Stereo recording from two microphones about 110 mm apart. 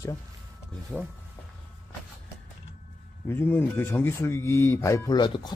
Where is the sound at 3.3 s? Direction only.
20° left (ahead or behind).